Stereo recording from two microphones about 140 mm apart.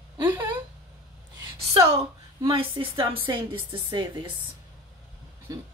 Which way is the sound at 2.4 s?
40° right (ahead or behind).